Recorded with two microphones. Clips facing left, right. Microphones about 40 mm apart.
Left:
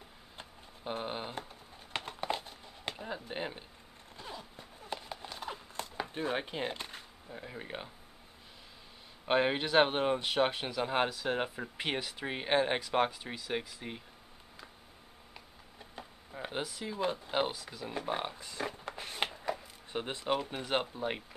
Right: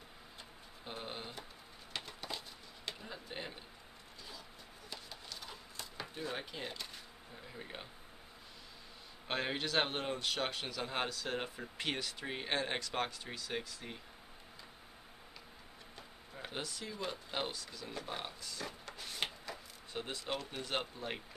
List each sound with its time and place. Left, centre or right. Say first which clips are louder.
0.8 s speech: left 7 dB; left
1.9 s a sound: left 8 dB; left
3.0 s speech: left 10 dB; left
4.2 s zipper: left 7 dB; left
4.9 s a sound: left 8 dB; left
9.3 s speech: left 8 dB; left
16.0 s speech: left 6 dB; centre